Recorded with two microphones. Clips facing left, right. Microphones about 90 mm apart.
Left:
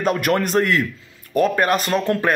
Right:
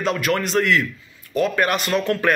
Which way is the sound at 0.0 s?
45° left (ahead or behind).